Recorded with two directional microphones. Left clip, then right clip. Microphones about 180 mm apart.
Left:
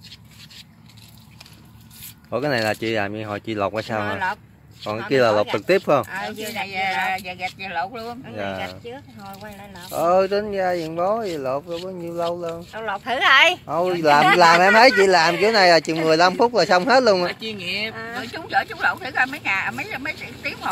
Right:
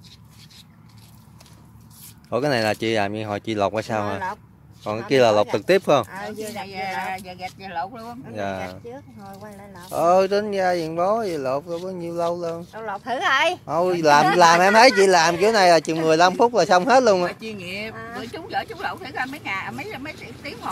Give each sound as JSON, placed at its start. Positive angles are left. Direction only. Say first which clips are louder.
{"t": 2.2, "sound": "speech", "louder": "right 1 dB", "side_deg": -15}
{"t": 6.5, "sound": "speech", "louder": "left 7 dB", "side_deg": 0}
{"t": 17.3, "sound": "speech", "louder": "left 4 dB", "side_deg": -30}
{"t": 17.9, "sound": "speech", "louder": "left 3 dB", "side_deg": 0}